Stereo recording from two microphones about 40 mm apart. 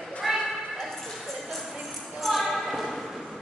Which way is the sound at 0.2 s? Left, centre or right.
Centre.